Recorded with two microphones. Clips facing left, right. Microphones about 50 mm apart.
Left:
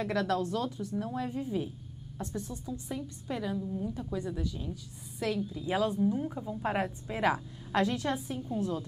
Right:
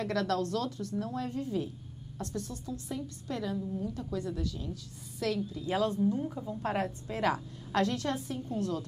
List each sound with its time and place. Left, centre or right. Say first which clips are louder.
0.0 s a woman's voice: left 1 dB; centre